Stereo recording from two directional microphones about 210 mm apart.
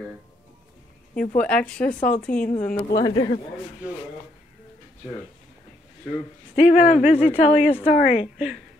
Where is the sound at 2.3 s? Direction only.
40° left (ahead or behind).